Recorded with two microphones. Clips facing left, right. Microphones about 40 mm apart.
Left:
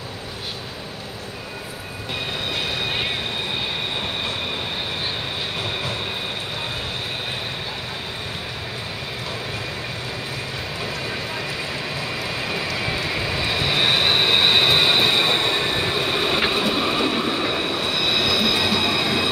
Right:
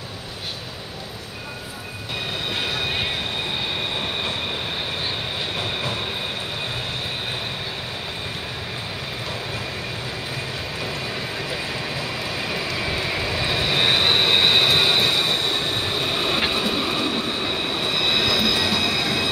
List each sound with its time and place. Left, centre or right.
5.6 s train: centre
10.8 s vehicle: centre
15.4 s train: left; by 17.7 s centre
17.7 s train: centre